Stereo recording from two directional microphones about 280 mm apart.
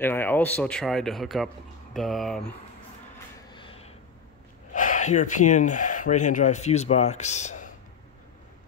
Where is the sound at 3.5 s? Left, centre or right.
Centre.